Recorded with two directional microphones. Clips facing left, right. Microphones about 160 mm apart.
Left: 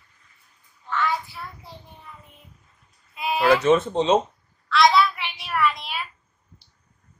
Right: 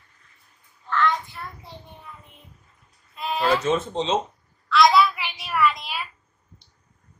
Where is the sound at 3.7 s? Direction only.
60° left (ahead or behind).